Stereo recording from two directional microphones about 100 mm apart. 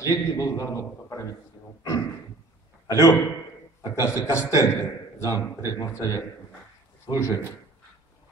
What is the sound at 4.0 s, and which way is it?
A man's voice, 30° left (ahead or behind).